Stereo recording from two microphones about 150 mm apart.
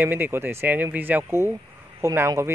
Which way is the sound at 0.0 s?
15° right (ahead or behind).